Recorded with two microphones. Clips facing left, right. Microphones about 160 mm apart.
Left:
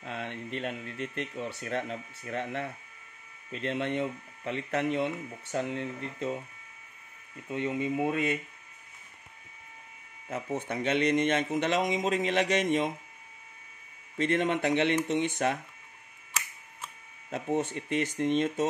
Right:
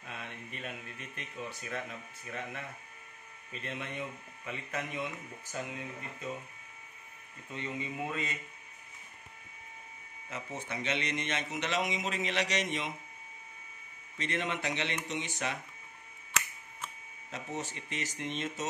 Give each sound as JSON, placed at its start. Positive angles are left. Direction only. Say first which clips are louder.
{"t": 0.0, "sound": "speech", "louder": "left 8 dB", "side_deg": 65}
{"t": 7.4, "sound": "speech", "louder": "left 9 dB", "side_deg": 55}
{"t": 10.3, "sound": "speech", "louder": "left 7 dB", "side_deg": 50}
{"t": 14.1, "sound": "speech", "louder": "left 8 dB", "side_deg": 50}
{"t": 17.3, "sound": "speech", "louder": "left 9 dB", "side_deg": 55}